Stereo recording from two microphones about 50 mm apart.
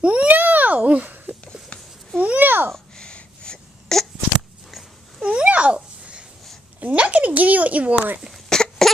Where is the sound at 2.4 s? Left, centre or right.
Right.